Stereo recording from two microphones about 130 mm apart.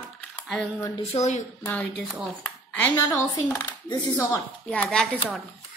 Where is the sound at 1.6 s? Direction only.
10° left (ahead or behind).